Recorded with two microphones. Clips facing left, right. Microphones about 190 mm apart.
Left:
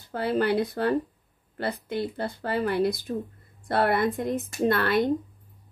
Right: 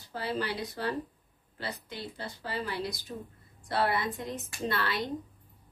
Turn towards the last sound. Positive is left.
turn(degrees=50)  # may be behind; listen again after turning